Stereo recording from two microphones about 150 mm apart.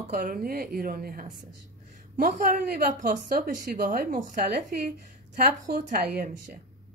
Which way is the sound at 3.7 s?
75° right (ahead or behind).